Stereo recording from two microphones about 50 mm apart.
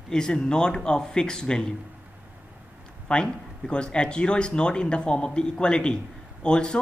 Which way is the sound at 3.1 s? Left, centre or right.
Centre.